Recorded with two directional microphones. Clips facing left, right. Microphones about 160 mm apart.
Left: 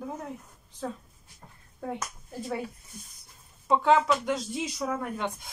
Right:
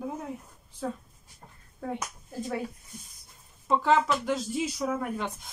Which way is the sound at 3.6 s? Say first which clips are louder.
Left 1 dB; centre (ahead or behind).